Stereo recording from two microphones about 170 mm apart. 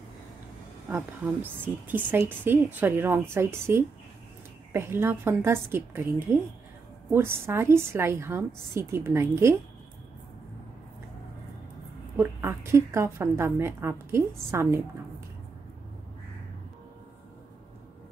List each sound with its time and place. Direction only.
0.8 s a woman's voice: 10° right (ahead or behind)
12.2 s a woman's voice: 15° right (ahead or behind)